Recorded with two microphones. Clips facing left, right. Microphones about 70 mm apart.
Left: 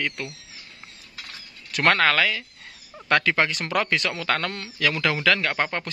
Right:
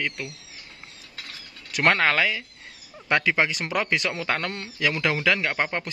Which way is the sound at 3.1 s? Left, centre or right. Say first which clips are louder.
Left 1 dB; centre.